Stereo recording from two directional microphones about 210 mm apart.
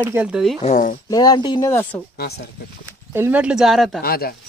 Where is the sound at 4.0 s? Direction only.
45° left (ahead or behind).